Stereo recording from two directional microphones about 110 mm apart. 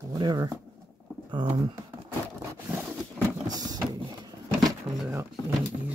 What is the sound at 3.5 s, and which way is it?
Printer, 35° right (ahead or behind).